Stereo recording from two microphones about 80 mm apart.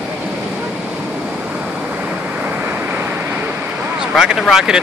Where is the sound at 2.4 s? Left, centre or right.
Centre.